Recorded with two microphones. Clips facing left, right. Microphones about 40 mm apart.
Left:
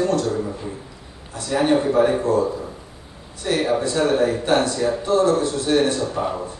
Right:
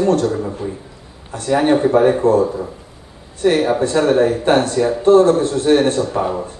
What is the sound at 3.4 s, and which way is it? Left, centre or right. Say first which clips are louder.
A man's voice: right 6 dB; right.